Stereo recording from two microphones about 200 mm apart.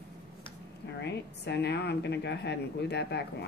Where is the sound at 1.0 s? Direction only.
60° left (ahead or behind).